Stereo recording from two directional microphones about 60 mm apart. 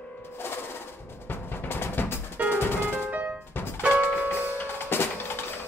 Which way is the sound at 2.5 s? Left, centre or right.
Left.